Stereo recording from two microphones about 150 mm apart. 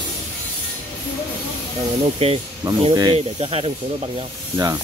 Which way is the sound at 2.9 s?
25° right (ahead or behind).